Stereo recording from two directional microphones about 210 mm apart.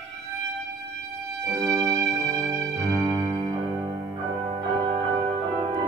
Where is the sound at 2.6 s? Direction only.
15° right (ahead or behind).